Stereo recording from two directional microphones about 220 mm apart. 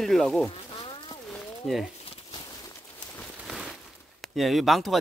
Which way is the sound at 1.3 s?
Centre (ahead or behind).